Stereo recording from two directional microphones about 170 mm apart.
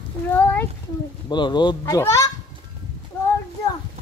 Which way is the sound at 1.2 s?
25° left (ahead or behind).